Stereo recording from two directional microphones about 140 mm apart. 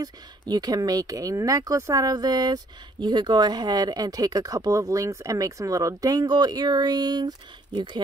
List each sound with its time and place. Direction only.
0.0 s speech: 25° right (ahead or behind)